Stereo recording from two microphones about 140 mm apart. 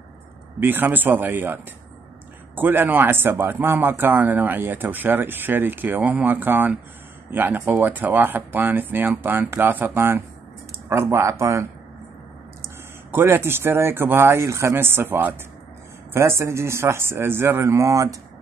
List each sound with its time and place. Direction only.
0.6 s speech: 15° right (ahead or behind)
12.6 s speech: 15° right (ahead or behind)